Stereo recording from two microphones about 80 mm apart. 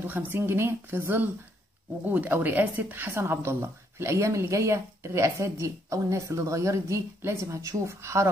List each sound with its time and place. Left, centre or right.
0.0 s speech: right